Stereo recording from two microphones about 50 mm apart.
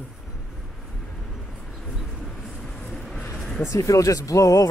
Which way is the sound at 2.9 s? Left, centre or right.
Centre.